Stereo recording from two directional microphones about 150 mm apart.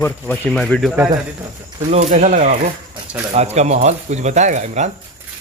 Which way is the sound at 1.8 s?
45° right (ahead or behind).